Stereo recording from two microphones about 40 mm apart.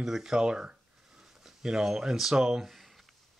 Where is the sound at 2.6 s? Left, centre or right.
Centre.